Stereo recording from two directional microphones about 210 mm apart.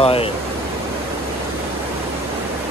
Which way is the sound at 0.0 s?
25° left (ahead or behind).